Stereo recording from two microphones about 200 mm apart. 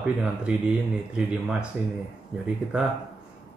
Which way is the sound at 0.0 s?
5° right (ahead or behind).